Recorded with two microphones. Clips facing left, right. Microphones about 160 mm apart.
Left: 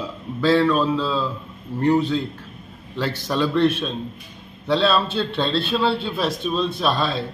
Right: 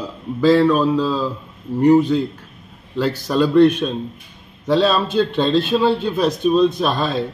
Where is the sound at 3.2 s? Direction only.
10° right (ahead or behind).